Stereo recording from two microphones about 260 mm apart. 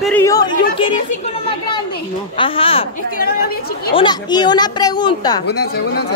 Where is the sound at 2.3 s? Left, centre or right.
Centre.